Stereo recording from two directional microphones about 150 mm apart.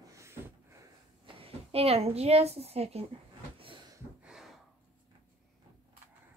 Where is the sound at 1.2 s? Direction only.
40° right (ahead or behind).